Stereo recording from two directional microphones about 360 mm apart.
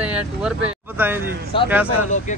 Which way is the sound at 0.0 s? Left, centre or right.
Centre.